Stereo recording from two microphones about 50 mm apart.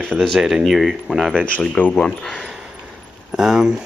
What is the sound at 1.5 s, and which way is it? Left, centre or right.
Speech, left.